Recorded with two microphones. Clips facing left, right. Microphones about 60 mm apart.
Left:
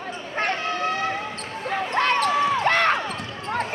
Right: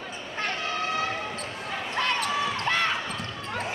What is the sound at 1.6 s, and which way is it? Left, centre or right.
Basketball bounce, left.